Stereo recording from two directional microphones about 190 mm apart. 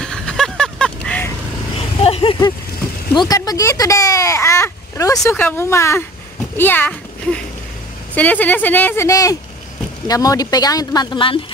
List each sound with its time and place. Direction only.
0.0 s a sound: 5° left (ahead or behind)
2.0 s vehicle: 30° left (ahead or behind)
3.2 s a child's voice: 20° left (ahead or behind)